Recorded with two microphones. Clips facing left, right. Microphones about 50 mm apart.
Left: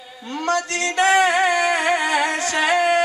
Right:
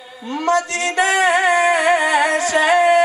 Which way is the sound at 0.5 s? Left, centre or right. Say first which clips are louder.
Right 4 dB; centre.